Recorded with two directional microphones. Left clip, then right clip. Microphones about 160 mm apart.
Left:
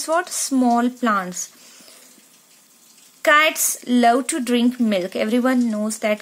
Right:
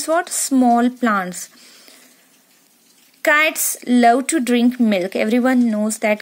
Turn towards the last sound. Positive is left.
turn(degrees=-30)  # may be behind; listen again after turning